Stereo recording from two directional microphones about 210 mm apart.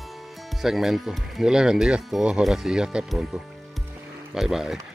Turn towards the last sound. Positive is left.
turn(degrees=0)  # may be behind; listen again after turning